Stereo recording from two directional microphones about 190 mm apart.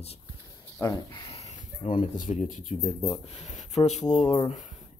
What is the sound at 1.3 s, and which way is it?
Speech, 40° left (ahead or behind).